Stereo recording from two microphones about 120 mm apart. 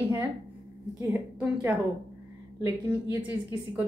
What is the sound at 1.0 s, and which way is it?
A woman's voice, 15° right (ahead or behind).